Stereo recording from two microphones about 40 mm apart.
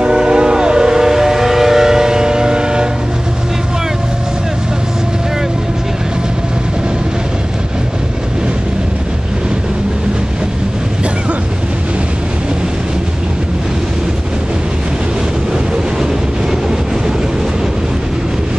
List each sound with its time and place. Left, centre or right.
0.0 s civil defense siren: centre